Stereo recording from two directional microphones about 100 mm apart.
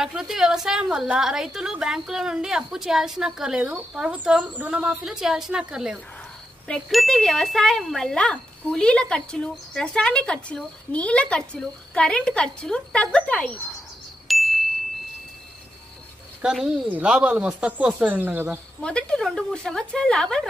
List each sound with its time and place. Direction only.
0.0 s a woman's voice: 5° right (ahead or behind)
14.2 s ding: centre (ahead or behind)
16.4 s a woman's voice: 5° right (ahead or behind)
18.8 s speech: 10° left (ahead or behind)